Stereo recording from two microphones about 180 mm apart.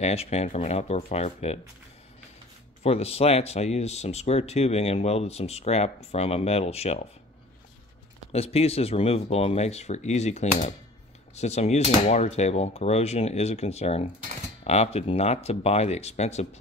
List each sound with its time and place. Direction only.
0.0 s speech: 35° left (ahead or behind)
2.8 s speech: 35° left (ahead or behind)
8.3 s speech: 35° left (ahead or behind)